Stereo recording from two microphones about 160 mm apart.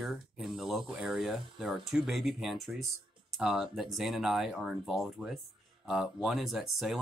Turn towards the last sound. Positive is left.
turn(degrees=0)  # may be behind; listen again after turning